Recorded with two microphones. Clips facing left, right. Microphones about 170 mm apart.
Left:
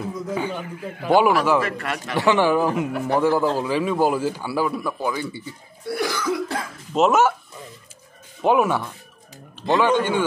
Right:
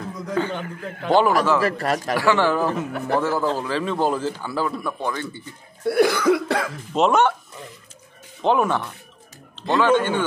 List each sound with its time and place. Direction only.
0.0 s a sound: 10° left (ahead or behind)
0.8 s a man's voice: 10° left (ahead or behind)
1.6 s speech: 35° right (ahead or behind)
2.1 s a man's voice: 15° left (ahead or behind)
5.9 s cough: 60° right (ahead or behind)
6.9 s speech: centre (ahead or behind)
8.4 s a man's voice: 10° left (ahead or behind)